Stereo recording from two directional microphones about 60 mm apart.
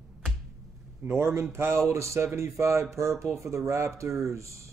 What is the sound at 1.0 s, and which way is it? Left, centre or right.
Speech, right.